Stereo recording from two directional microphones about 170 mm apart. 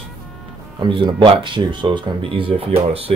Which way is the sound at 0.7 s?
30° right (ahead or behind).